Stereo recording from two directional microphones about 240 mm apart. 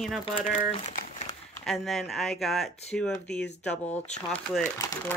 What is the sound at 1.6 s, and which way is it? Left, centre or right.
Speech, centre.